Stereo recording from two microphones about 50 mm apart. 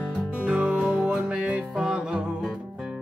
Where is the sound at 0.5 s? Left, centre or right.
Centre.